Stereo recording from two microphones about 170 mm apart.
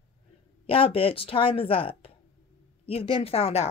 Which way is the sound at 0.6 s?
35° left (ahead or behind).